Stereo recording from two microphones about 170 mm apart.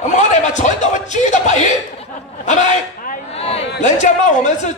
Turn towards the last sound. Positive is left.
turn(degrees=45)  # may be behind; listen again after turning